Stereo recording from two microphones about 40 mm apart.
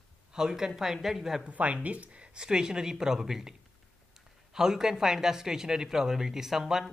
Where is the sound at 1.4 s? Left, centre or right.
Right; by 6.8 s centre.